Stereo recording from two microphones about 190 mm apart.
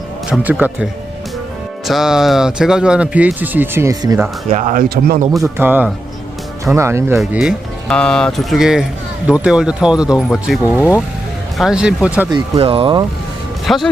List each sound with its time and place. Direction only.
0.3 s a man's voice: 10° right (ahead or behind)
1.9 s speech: centre (ahead or behind); by 4.3 s 20° right (ahead or behind)
4.5 s speech: 40° right (ahead or behind)
5.4 s a man's voice: 10° right (ahead or behind)
7.2 s a man's voice: 5° right (ahead or behind)
12.3 s speech: 30° right (ahead or behind)
13.7 s speech: centre (ahead or behind)